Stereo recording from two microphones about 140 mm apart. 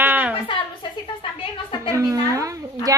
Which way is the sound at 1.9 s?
25° right (ahead or behind).